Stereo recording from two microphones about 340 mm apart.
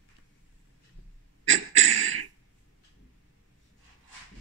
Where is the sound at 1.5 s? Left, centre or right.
Right.